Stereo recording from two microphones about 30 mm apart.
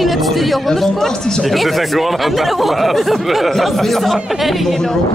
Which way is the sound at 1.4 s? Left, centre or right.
Centre.